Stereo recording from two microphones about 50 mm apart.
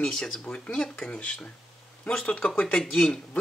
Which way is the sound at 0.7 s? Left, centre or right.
Centre.